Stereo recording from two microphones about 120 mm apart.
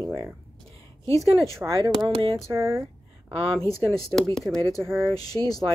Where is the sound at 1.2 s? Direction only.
25° right (ahead or behind).